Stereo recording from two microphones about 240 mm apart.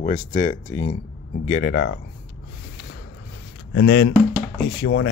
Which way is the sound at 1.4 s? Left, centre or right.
Left.